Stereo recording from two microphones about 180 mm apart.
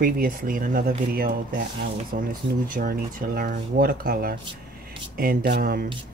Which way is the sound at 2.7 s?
50° right (ahead or behind).